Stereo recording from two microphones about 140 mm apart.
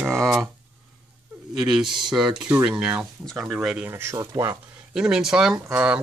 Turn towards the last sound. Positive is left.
turn(degrees=-10)  # may be behind; listen again after turning